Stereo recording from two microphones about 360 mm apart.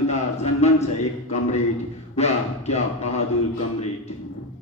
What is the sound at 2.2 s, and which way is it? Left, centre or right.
A man's voice, centre.